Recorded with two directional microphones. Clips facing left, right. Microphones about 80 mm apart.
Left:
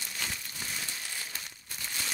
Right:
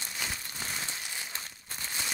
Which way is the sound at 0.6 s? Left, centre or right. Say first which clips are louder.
Right 2 dB; right.